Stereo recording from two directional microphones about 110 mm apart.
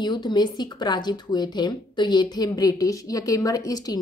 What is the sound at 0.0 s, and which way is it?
Speech, 40° left (ahead or behind).